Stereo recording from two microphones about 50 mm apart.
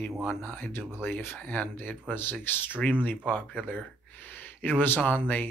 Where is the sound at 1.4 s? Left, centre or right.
Left.